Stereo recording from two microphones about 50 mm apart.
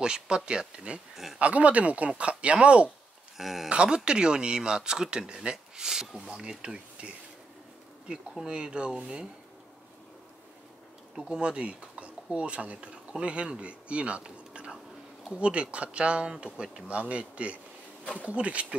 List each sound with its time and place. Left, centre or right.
0.0 s speech: centre
3.3 s speech: centre
3.6 s speech: centre
11.1 s speech: centre